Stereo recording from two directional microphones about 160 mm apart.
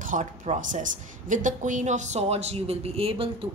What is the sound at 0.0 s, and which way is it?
A woman's voice, 50° right (ahead or behind).